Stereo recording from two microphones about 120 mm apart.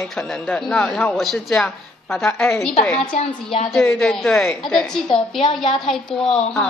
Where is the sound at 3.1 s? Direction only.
65° left (ahead or behind).